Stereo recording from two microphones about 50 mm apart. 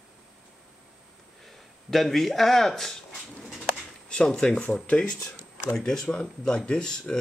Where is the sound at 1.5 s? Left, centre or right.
Centre; by 5.2 s left.